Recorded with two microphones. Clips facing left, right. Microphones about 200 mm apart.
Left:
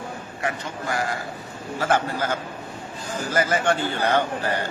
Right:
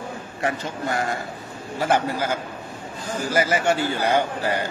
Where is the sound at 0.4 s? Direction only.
25° right (ahead or behind).